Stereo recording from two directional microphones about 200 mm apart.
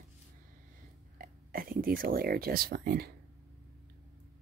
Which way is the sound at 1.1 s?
45° right (ahead or behind).